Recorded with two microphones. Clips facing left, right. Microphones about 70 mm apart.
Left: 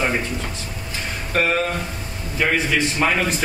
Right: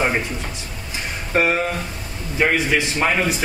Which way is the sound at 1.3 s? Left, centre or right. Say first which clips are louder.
Right 1 dB; centre.